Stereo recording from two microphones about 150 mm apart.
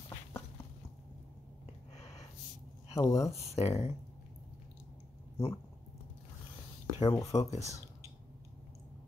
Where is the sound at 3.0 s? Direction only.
20° left (ahead or behind).